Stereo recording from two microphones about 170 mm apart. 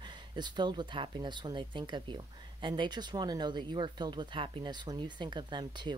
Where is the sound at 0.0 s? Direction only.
25° right (ahead or behind).